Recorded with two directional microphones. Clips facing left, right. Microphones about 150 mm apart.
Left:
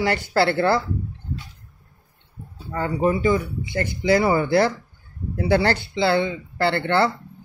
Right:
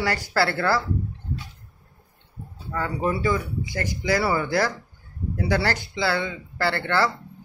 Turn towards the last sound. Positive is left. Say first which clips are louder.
# left 3 dB
turn(degrees=25)  # may be behind; listen again after turning